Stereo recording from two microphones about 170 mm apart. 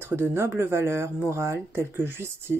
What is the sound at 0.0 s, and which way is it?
Speech, 15° right (ahead or behind).